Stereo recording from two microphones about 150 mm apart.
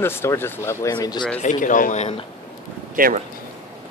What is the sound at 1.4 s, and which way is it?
Speech, 55° left (ahead or behind).